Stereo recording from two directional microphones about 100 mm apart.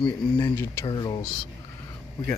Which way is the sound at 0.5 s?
25° left (ahead or behind).